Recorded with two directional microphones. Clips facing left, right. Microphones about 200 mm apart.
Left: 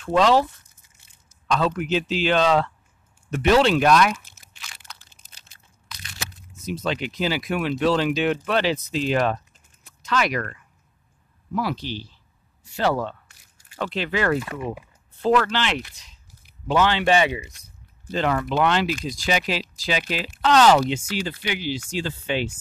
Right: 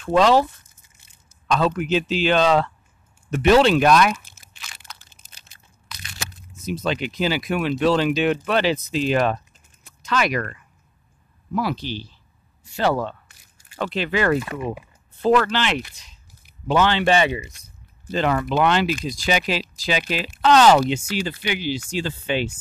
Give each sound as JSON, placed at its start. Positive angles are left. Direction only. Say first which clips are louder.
{"t": 0.0, "sound": "speech", "louder": "right 2 dB", "side_deg": -10}
{"t": 1.5, "sound": "speech", "louder": "right 2 dB", "side_deg": -15}
{"t": 3.3, "sound": "crunch", "louder": "right 3 dB", "side_deg": -20}
{"t": 6.6, "sound": "speech", "louder": "right 2 dB", "side_deg": -10}
{"t": 11.8, "sound": "speech", "louder": "right 2 dB", "side_deg": -65}
{"t": 12.7, "sound": "speech", "louder": "right 1 dB", "side_deg": -20}
{"t": 16.6, "sound": "speech", "louder": "right 1 dB", "side_deg": 5}
{"t": 18.0, "sound": "speech", "louder": "right 2 dB", "side_deg": -15}